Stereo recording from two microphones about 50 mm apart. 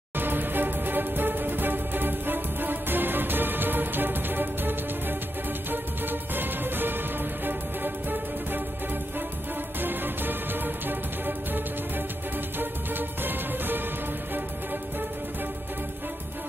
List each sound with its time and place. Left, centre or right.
0.2 s music: right
9.8 s music: right